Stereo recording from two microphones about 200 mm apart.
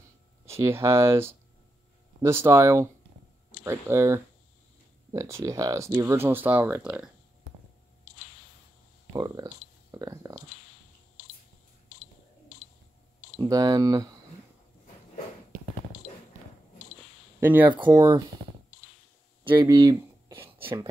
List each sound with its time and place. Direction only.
0.5 s speech: 15° right (ahead or behind)
9.1 s speech: 20° right (ahead or behind)
13.4 s speech: 20° right (ahead or behind)
17.4 s speech: 10° right (ahead or behind)
17.7 s speech: 20° right (ahead or behind)
19.4 s a sound: 20° right (ahead or behind)
20.5 s a sound: 25° right (ahead or behind)